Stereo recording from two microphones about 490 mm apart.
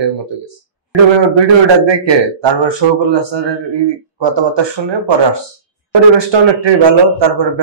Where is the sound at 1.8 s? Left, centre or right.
Right.